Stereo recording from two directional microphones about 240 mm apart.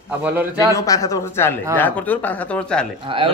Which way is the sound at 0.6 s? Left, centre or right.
Centre.